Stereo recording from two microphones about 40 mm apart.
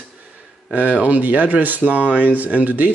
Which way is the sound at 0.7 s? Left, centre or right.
Right.